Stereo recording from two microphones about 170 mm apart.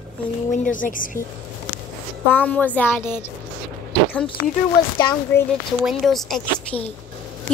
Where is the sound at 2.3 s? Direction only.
10° left (ahead or behind).